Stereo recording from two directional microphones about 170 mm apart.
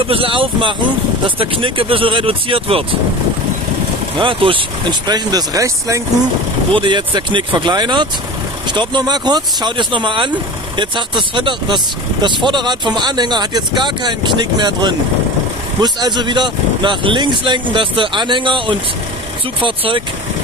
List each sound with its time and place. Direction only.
0.0 s speech: 30° right (ahead or behind)
4.2 s speech: 30° right (ahead or behind)